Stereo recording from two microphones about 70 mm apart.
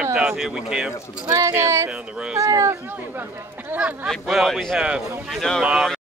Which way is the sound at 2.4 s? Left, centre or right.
Right.